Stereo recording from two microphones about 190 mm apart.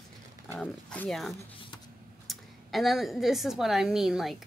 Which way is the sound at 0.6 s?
5° left (ahead or behind).